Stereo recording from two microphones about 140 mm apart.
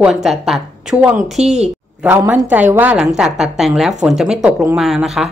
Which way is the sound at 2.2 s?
10° right (ahead or behind).